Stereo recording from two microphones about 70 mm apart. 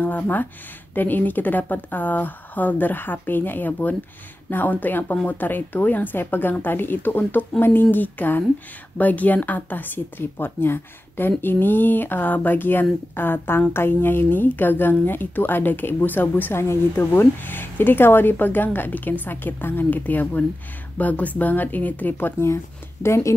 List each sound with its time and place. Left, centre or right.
0.0 s speech: left
23.0 s speech: left